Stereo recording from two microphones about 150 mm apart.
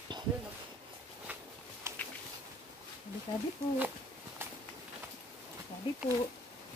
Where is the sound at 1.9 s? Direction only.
20° right (ahead or behind).